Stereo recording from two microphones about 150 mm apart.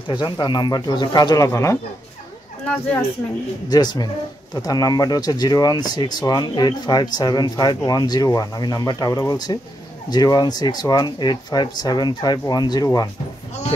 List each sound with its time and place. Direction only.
0.1 s speech: 30° left (ahead or behind)
2.6 s speech: 10° left (ahead or behind)
3.7 s speech: 30° left (ahead or behind)